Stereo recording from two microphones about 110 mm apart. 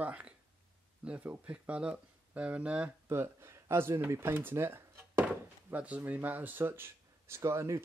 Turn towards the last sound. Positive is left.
turn(degrees=-25)  # may be behind; listen again after turning